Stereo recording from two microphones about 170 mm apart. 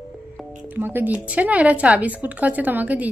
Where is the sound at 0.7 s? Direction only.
10° right (ahead or behind).